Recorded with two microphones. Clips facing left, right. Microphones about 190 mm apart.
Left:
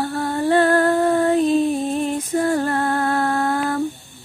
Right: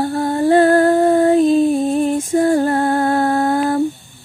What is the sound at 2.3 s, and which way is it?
Female singing, 25° right (ahead or behind).